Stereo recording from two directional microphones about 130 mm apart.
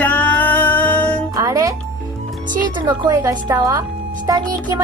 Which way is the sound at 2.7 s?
30° right (ahead or behind).